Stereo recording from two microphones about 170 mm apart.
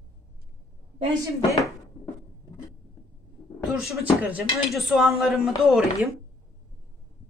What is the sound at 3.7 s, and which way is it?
Speech, 5° right (ahead or behind).